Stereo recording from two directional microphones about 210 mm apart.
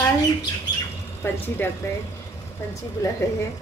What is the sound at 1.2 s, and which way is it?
Speech, 10° left (ahead or behind).